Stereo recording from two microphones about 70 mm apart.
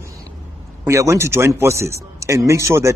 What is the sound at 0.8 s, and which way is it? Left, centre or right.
A man's voice, right.